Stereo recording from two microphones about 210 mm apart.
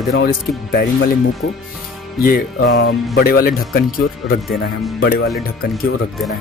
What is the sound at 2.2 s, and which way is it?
Speech, 45° left (ahead or behind).